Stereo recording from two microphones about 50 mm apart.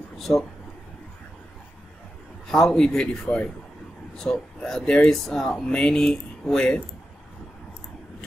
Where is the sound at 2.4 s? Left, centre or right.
Centre.